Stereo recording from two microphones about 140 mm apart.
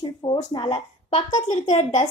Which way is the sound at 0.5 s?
40° left (ahead or behind).